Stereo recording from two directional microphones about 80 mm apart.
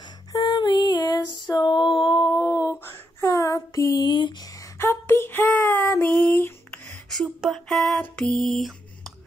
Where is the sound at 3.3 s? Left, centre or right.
Left.